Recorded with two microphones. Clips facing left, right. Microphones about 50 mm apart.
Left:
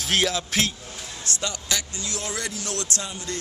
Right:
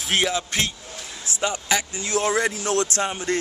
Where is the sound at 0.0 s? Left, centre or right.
Centre.